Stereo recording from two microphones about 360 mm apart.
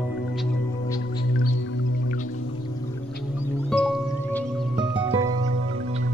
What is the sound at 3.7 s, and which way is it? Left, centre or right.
Music, centre.